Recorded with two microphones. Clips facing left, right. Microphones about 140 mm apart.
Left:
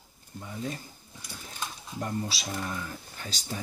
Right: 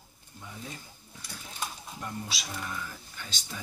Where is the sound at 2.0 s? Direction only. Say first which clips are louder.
Left 6 dB; 35° left (ahead or behind).